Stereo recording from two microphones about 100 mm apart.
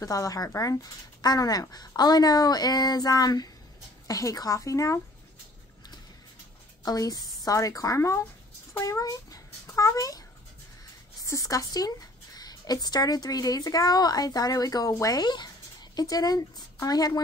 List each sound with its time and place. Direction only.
0.0 s speech: 35° left (ahead or behind)
6.8 s a child's voice: 40° left (ahead or behind)
11.2 s speech: 35° left (ahead or behind)